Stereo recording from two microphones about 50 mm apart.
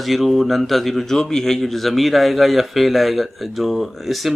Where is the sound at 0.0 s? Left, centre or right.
Centre.